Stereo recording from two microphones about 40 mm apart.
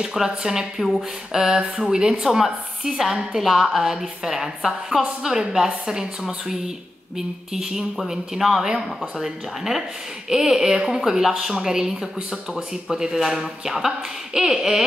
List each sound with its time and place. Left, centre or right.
0.0 s a woman's voice: centre
3.8 s a woman's voice: centre